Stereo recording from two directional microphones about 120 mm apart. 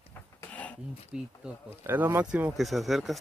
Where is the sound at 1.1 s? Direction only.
5° right (ahead or behind).